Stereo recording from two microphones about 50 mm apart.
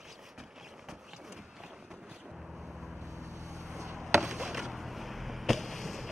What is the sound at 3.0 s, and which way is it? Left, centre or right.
Vehicle, right.